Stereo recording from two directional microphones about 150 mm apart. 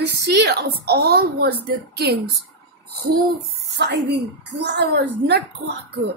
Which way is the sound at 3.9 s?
90° right.